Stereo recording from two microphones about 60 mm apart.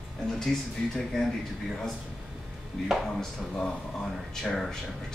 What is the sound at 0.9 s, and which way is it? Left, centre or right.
Speech, centre.